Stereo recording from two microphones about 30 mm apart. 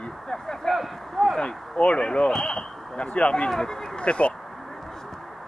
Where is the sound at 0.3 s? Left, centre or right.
Centre.